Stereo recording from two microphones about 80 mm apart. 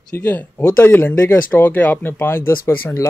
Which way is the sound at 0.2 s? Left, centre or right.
Left.